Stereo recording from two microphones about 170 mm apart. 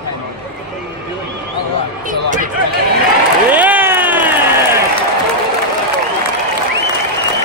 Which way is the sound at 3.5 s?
10° right (ahead or behind).